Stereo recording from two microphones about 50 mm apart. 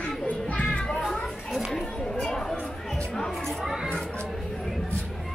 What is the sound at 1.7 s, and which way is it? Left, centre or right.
Speech, centre.